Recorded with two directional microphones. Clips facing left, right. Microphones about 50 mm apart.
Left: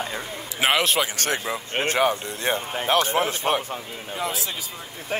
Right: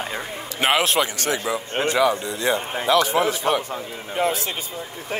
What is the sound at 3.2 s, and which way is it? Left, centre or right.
Speech, left.